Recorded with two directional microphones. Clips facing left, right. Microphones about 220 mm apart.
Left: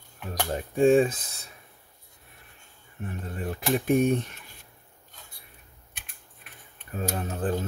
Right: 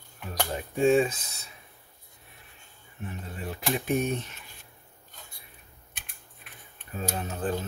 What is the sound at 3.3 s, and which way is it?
Speech, 50° left (ahead or behind).